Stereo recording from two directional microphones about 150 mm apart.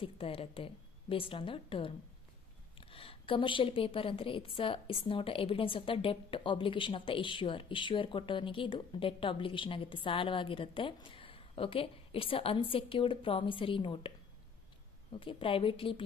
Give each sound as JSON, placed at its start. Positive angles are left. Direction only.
{"t": 0.0, "sound": "a woman's voice", "side_deg": 40}
{"t": 15.1, "sound": "a woman's voice", "side_deg": 35}